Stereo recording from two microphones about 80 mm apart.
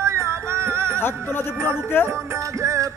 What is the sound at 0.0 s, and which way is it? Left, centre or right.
Music, right.